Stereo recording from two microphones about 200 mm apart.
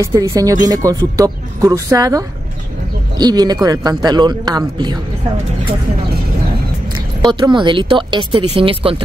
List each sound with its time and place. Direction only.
0.0 s speech: 15° right (ahead or behind)
7.2 s speech: 20° right (ahead or behind)